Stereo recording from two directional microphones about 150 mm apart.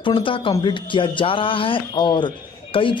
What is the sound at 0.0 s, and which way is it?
Speech, 35° left (ahead or behind).